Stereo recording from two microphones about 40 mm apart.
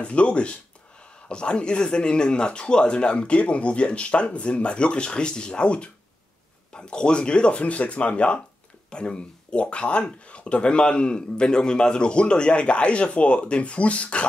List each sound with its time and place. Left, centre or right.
0.0 s speech: left